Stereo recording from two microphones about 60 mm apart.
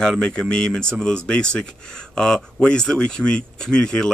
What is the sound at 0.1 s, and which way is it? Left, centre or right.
Speech, centre.